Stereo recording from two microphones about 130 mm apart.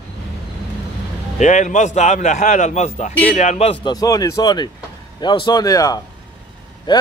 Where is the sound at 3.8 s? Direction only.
30° left (ahead or behind).